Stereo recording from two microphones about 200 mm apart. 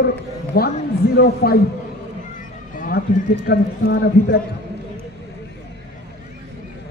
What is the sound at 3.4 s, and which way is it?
Speech, 50° left (ahead or behind).